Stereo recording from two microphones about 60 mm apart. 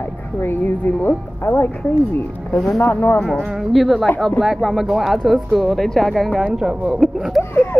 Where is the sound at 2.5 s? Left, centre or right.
Centre.